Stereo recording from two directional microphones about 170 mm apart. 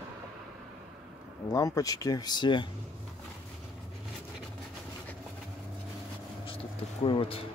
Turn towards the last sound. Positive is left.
turn(degrees=30)  # may be behind; listen again after turning